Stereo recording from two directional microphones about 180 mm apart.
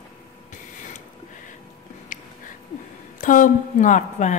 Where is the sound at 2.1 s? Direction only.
45° left (ahead or behind).